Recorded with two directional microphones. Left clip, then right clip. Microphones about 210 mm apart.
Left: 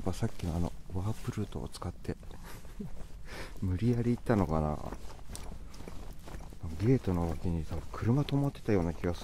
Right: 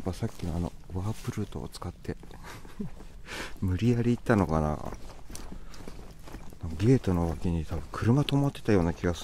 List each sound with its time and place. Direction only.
0.0 s speech: 5° right (ahead or behind)
0.9 s speech: 15° right (ahead or behind)
3.3 s speech: 30° right (ahead or behind)
6.8 s speech: 35° right (ahead or behind)